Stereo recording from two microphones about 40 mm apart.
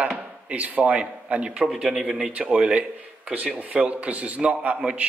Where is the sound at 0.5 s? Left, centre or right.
Right.